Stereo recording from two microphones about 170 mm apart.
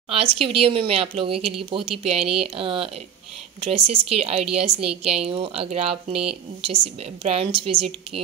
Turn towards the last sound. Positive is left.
turn(degrees=-30)  # may be behind; listen again after turning